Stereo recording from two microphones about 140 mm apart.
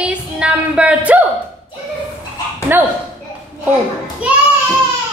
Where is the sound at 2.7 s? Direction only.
15° right (ahead or behind).